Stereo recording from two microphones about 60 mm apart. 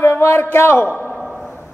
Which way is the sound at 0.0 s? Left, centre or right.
Left.